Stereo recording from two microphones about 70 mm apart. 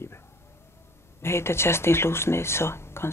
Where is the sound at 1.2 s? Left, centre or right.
Left.